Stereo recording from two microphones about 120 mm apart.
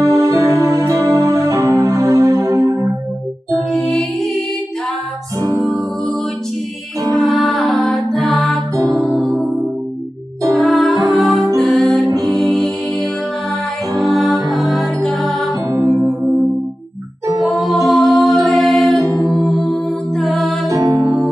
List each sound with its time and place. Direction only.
0.0 s music: 30° right (ahead or behind)
3.7 s music: 5° left (ahead or behind)
5.4 s music: 25° right (ahead or behind)
7.1 s music: 5° left (ahead or behind)
8.7 s music: 25° right (ahead or behind)
9.1 s music: centre (ahead or behind)
10.6 s music: 5° left (ahead or behind)
14.1 s music: centre (ahead or behind)
17.8 s music: centre (ahead or behind)
20.8 s music: 30° right (ahead or behind)